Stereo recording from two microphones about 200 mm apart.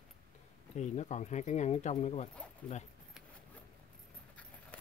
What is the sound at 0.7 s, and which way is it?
Speech, 35° left (ahead or behind).